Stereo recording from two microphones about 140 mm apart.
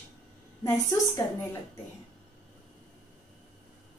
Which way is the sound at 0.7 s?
20° left (ahead or behind).